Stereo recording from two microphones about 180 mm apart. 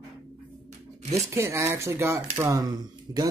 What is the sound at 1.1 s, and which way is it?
Speech, 15° right (ahead or behind).